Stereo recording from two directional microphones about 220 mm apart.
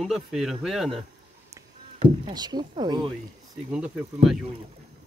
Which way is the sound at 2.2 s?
20° right (ahead or behind).